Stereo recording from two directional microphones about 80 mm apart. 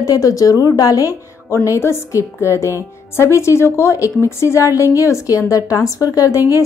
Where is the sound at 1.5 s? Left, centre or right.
Left.